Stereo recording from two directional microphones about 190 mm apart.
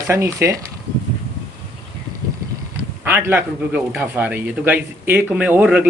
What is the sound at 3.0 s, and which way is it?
Speech, 10° right (ahead or behind).